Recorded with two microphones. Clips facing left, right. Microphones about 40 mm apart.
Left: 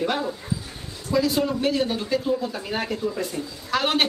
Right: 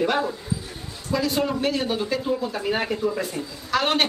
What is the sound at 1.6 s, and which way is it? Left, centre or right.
Speech, centre.